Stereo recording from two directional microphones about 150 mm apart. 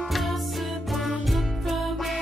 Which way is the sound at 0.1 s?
Centre (ahead or behind).